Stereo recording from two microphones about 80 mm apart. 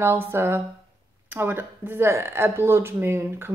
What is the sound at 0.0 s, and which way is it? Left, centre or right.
Speech, right.